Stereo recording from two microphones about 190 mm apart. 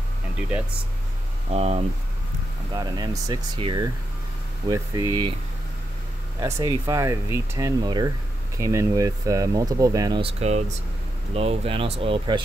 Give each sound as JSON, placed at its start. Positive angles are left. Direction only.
{"t": 1.5, "sound": "speech", "side_deg": -35}
{"t": 2.7, "sound": "speech", "side_deg": -20}
{"t": 6.4, "sound": "speech", "side_deg": -15}